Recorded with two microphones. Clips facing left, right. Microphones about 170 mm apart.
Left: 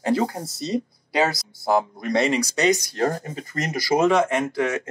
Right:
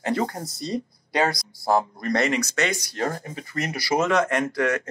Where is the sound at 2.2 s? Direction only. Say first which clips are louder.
Left 3 dB; 30° left (ahead or behind).